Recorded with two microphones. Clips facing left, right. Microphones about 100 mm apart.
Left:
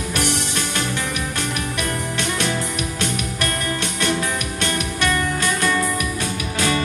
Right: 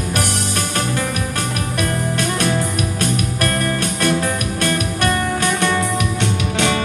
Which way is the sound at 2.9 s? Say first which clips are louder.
Right 4 dB; 45° right (ahead or behind).